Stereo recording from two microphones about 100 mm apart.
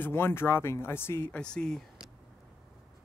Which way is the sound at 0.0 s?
25° left (ahead or behind).